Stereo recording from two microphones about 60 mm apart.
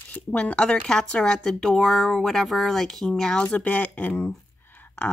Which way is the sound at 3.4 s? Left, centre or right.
Left.